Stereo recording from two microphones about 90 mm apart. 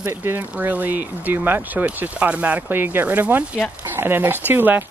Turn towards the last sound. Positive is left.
turn(degrees=-20)  # may be behind; listen again after turning